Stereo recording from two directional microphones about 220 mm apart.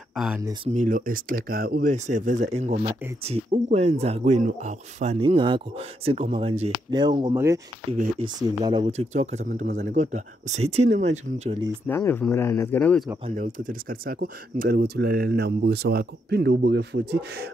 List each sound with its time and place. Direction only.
0.1 s speech: centre (ahead or behind)
0.7 s speech: 35° right (ahead or behind); by 8.8 s 20° right (ahead or behind)
8.8 s speech: 30° right (ahead or behind)
11.9 s speech: 10° left (ahead or behind)
13.2 s speech: 35° right (ahead or behind)